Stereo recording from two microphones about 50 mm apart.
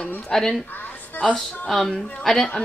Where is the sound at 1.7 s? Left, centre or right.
Centre.